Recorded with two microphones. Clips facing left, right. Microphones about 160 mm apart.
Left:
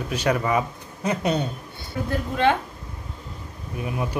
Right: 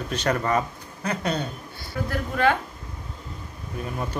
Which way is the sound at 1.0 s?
20° left (ahead or behind).